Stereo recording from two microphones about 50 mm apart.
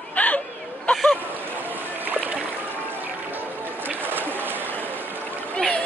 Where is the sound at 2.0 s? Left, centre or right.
Right.